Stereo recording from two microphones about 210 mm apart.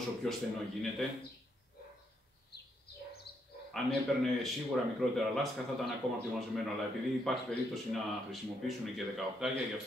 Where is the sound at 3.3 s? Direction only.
25° left (ahead or behind).